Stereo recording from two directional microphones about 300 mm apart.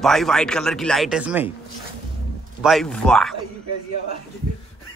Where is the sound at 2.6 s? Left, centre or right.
Centre.